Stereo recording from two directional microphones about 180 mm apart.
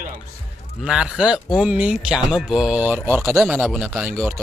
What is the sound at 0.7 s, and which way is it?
Speech, 5° right (ahead or behind).